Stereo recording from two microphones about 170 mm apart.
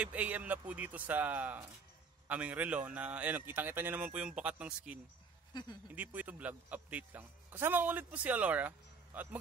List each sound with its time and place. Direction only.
0.0 s speech: 10° right (ahead or behind)
5.5 s speech: 25° left (ahead or behind)
5.9 s speech: 10° right (ahead or behind)